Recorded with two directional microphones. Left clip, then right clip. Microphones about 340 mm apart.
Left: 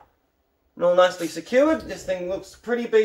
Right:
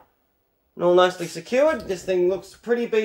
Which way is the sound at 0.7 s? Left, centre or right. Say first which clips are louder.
Even; right.